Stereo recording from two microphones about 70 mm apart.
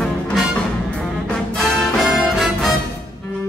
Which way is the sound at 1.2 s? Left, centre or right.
Centre.